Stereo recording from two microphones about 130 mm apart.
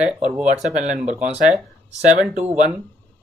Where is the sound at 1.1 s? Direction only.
10° right (ahead or behind).